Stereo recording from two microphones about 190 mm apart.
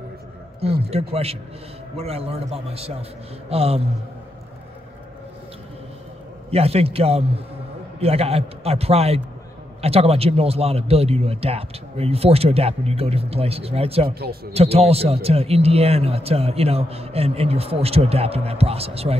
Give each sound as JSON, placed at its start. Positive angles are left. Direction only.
{"t": 0.8, "sound": "speech", "side_deg": -30}
{"t": 6.5, "sound": "speech", "side_deg": -30}
{"t": 14.0, "sound": "speech", "side_deg": -55}
{"t": 14.5, "sound": "speech", "side_deg": -30}